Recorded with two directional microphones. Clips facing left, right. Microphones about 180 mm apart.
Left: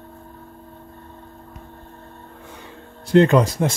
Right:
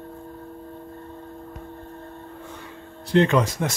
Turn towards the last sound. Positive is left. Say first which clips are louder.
# left 4 dB
turn(degrees=35)  # may be behind; listen again after turning